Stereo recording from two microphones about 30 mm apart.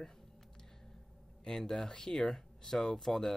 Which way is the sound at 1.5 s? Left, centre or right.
Centre.